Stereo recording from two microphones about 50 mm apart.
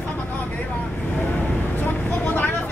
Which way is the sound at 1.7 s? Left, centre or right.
Left.